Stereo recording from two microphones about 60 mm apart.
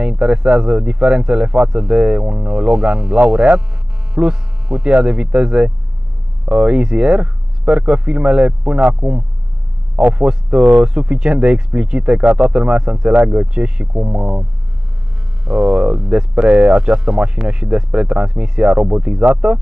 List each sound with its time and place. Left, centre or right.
0.0 s speech: centre
13.1 s speech: right